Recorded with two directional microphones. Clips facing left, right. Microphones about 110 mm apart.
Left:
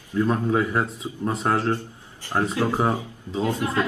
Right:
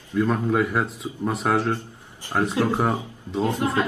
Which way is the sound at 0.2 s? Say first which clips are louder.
Even; centre (ahead or behind).